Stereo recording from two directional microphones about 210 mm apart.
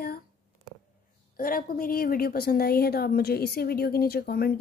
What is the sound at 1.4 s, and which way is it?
A woman's voice, 45° left (ahead or behind).